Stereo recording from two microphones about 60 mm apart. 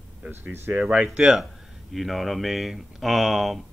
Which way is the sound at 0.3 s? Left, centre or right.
Right.